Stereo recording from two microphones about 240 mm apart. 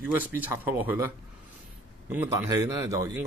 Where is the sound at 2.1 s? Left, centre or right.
Centre.